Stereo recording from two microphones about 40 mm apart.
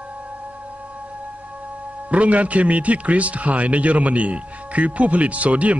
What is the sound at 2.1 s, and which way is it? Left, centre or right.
A man's voice, right.